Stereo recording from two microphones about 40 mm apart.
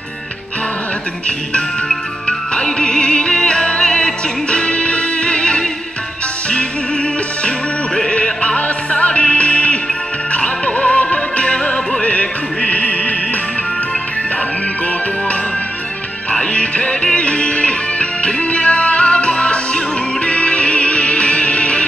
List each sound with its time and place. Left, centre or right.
2.2 s music: left
7.4 s music: left
16.3 s music: left